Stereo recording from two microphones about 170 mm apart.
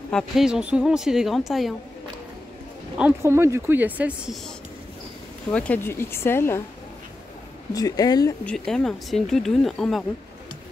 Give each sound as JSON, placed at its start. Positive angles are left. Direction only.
{"t": 0.1, "sound": "a woman's voice", "side_deg": -5}
{"t": 3.0, "sound": "speech", "side_deg": -10}
{"t": 5.5, "sound": "speech", "side_deg": 10}
{"t": 7.7, "sound": "speech", "side_deg": 20}
{"t": 8.5, "sound": "a woman's voice", "side_deg": 5}